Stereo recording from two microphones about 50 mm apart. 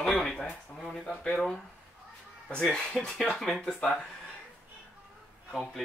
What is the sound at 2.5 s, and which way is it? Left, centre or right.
Speech, centre.